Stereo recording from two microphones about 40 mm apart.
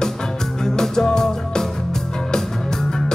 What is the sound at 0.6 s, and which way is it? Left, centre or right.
Music, centre.